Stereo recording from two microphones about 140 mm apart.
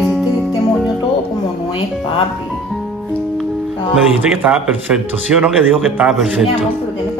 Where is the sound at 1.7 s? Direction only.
40° left (ahead or behind).